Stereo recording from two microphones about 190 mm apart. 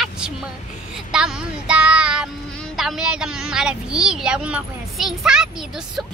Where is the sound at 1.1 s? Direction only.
5° right (ahead or behind).